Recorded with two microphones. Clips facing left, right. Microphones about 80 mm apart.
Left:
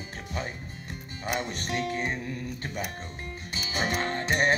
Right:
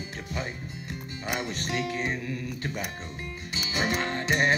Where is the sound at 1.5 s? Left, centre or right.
Left.